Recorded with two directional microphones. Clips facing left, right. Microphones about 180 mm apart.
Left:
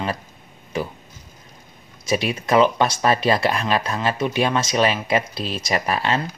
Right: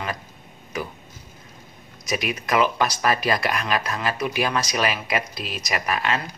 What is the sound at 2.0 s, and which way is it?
Speech, 30° left (ahead or behind).